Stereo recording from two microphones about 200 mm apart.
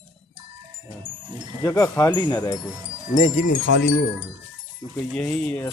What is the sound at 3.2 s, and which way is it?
Speech, 40° left (ahead or behind).